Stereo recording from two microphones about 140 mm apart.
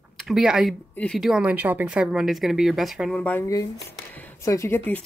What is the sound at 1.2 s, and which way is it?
Speech, 5° right (ahead or behind).